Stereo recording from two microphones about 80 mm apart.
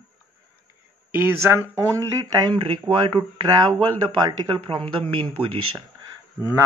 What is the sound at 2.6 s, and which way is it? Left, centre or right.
Speech, right.